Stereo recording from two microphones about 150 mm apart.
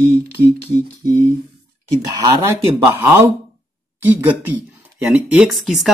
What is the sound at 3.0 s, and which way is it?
Speech, 15° right (ahead or behind).